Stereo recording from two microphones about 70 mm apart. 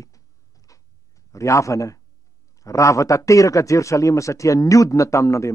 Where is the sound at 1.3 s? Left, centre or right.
Left.